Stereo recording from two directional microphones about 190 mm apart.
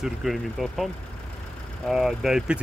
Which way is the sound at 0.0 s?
Centre (ahead or behind).